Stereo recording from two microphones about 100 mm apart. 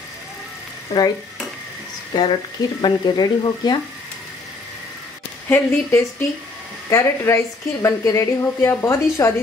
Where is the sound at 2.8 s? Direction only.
45° left (ahead or behind).